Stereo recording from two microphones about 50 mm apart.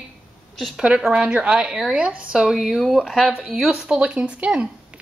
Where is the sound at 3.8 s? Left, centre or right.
Right.